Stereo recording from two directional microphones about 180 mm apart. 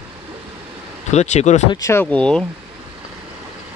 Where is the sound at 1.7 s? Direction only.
15° left (ahead or behind).